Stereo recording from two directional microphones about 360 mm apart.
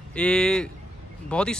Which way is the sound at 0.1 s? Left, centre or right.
Centre.